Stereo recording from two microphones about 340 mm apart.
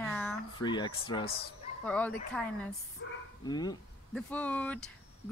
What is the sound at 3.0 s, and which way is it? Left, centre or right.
Speech, left.